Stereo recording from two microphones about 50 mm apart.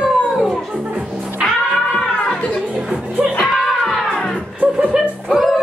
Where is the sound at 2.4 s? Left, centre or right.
Centre.